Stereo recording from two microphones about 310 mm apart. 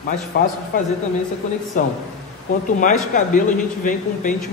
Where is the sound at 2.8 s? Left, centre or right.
Left.